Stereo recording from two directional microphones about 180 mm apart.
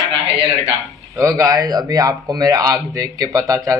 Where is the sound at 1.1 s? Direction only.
20° right (ahead or behind).